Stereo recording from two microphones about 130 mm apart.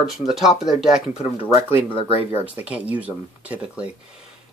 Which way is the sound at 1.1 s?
50° left (ahead or behind).